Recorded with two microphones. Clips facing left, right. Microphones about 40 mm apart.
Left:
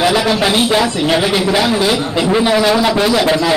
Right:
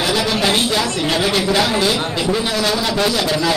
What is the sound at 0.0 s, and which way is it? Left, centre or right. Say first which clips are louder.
A man's voice: left 4 dB; left.